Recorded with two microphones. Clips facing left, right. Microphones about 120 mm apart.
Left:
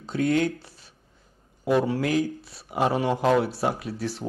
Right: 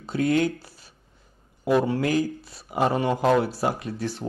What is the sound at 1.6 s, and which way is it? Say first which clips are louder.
Speech: right 1 dB; centre (ahead or behind).